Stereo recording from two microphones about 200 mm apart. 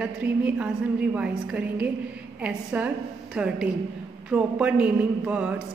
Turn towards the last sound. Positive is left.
turn(degrees=-5)  # may be behind; listen again after turning